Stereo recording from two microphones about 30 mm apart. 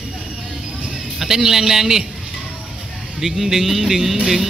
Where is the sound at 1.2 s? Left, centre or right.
Centre.